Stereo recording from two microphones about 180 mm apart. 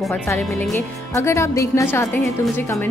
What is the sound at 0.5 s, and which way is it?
Speech, centre (ahead or behind).